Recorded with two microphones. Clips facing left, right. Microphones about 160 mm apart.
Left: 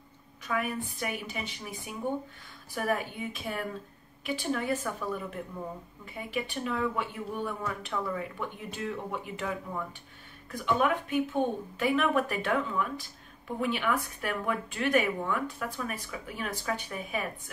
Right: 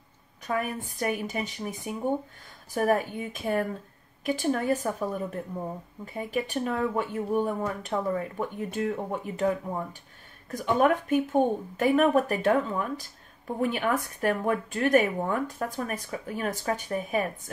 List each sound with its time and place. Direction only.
0.5 s speech: 45° right (ahead or behind)